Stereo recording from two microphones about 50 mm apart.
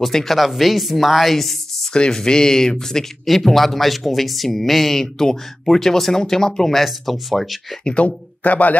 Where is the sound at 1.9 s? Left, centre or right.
Centre.